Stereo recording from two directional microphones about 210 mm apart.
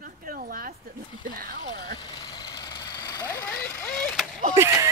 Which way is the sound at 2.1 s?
15° left (ahead or behind).